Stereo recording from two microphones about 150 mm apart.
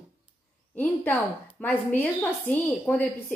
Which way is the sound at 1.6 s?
10° left (ahead or behind).